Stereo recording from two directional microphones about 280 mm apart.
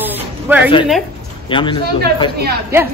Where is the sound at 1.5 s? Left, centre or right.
Centre.